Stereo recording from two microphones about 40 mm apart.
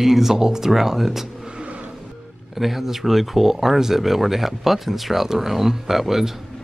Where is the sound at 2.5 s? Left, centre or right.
Centre.